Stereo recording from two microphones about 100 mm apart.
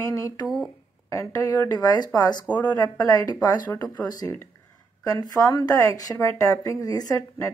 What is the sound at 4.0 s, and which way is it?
A woman's voice, 40° left (ahead or behind).